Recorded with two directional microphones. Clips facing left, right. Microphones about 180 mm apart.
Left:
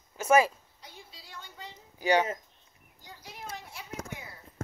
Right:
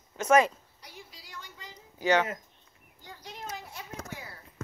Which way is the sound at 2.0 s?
15° left (ahead or behind).